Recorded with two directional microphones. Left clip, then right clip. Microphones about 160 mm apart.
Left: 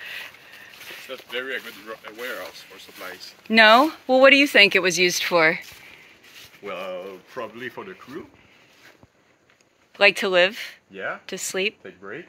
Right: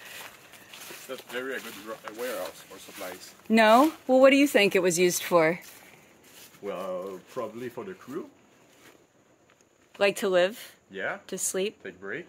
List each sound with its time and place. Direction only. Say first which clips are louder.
1.3 s speech: left 5 dB; 55° right (ahead or behind)
2.1 s speech: left 1 dB; 70° right (ahead or behind)
3.4 s speech: left 5 dB; 15° right (ahead or behind)
6.6 s speech: left 2 dB; 50° right (ahead or behind)
7.0 s speech: left 1 dB; 20° right (ahead or behind)
9.9 s speech: left 6 dB; centre (ahead or behind)
10.9 s speech: left 1 dB; 45° left (ahead or behind)
11.2 s speech: left 5 dB; 5° left (ahead or behind)
11.8 s speech: even; 45° left (ahead or behind)